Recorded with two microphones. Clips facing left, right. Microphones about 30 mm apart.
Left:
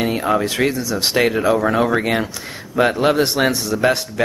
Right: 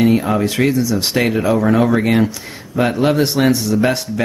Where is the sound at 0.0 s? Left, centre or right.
Centre.